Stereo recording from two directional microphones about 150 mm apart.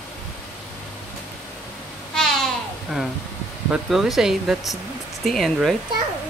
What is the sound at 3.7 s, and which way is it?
Speech, centre (ahead or behind).